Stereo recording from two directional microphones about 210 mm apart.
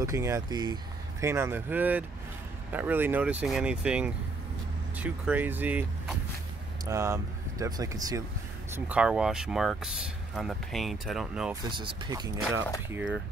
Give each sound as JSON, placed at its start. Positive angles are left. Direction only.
{"t": 0.0, "sound": "speech", "side_deg": -15}
{"t": 8.7, "sound": "speech", "side_deg": -5}
{"t": 11.6, "sound": "speech", "side_deg": -20}